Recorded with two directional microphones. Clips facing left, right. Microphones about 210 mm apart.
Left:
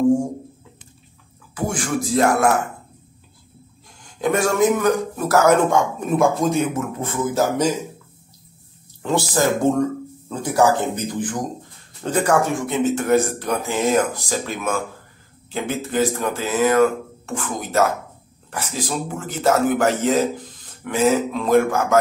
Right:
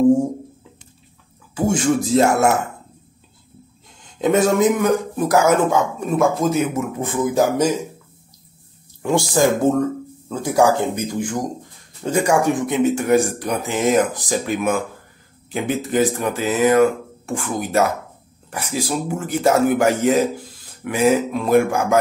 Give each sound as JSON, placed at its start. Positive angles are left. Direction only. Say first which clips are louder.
{"t": 1.5, "sound": "speech", "louder": "right 6 dB", "side_deg": -25}
{"t": 4.0, "sound": "a man's voice", "louder": "right 3 dB", "side_deg": -20}
{"t": 5.7, "sound": "speech", "louder": "even", "side_deg": 0}
{"t": 9.0, "sound": "speech", "louder": "right 3 dB", "side_deg": -15}